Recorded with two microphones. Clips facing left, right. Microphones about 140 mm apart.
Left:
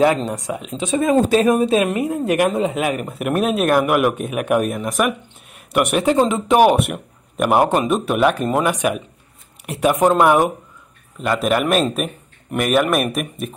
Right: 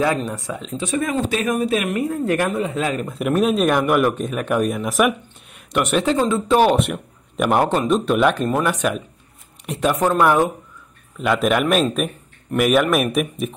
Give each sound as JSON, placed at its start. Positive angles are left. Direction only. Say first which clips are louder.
{"t": 0.0, "sound": "speech", "louder": "left 4 dB", "side_deg": 20}
{"t": 1.1, "sound": "speech", "louder": "left 6 dB", "side_deg": 40}
{"t": 2.0, "sound": "speech", "louder": "left 2 dB", "side_deg": 15}
{"t": 5.7, "sound": "speech", "louder": "left 2 dB", "side_deg": 10}
{"t": 7.6, "sound": "speech", "louder": "left 1 dB", "side_deg": 15}
{"t": 8.5, "sound": "speech", "louder": "left 2 dB", "side_deg": 15}
{"t": 11.1, "sound": "speech", "louder": "even", "side_deg": 0}